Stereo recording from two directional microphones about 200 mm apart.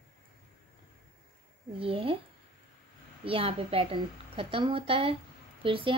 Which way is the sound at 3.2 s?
30° right (ahead or behind).